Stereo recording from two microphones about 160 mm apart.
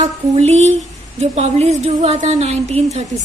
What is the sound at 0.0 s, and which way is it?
A woman's voice, 45° right (ahead or behind).